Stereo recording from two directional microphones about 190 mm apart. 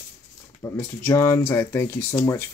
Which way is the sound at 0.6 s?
10° left (ahead or behind).